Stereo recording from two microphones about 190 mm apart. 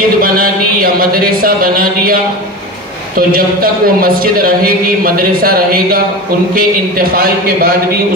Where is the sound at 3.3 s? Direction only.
50° right (ahead or behind).